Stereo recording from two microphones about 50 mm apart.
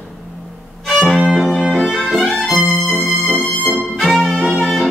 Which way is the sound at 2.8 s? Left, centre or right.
Left.